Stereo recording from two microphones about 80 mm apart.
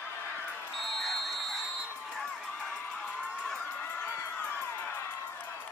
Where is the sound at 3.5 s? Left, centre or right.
Centre.